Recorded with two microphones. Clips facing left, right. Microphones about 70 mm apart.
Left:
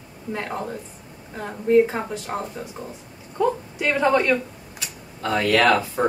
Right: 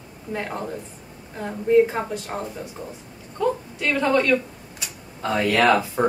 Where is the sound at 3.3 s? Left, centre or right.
Centre.